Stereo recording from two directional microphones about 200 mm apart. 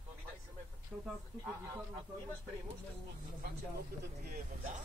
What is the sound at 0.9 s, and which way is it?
Speech, 10° right (ahead or behind).